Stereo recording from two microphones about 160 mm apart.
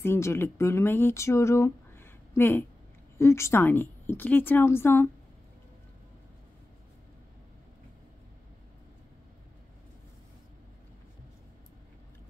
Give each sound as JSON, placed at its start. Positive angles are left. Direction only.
{"t": 0.0, "sound": "a woman's voice", "side_deg": 15}